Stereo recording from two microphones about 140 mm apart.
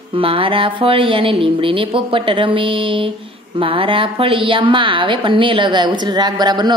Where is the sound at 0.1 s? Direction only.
40° right (ahead or behind).